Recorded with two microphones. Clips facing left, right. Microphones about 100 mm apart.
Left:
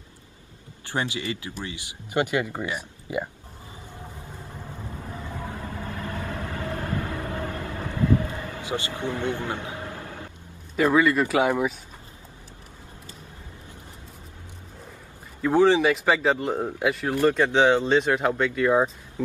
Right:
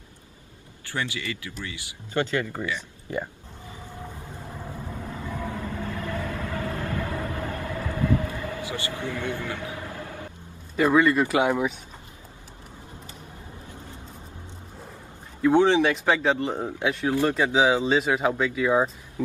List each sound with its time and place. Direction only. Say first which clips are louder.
0.9 s speech: left 3 dB; 20° left (ahead or behind)
5.3 s train: right 4 dB; 35° left (ahead or behind)
7.2 s vehicle: even; 30° left (ahead or behind)
10.8 s speech: even; centre (ahead or behind)
15.4 s speech: even; centre (ahead or behind)